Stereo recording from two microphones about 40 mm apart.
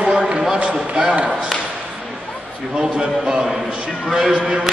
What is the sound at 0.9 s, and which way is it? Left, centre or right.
Speech, right.